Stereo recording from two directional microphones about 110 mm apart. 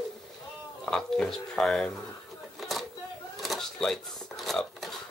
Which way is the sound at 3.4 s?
Centre (ahead or behind).